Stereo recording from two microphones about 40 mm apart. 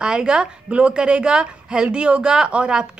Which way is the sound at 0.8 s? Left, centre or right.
Right.